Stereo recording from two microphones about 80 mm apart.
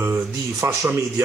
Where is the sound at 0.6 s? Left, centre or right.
Right.